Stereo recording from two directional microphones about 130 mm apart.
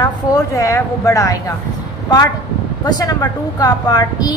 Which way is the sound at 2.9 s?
30° left (ahead or behind).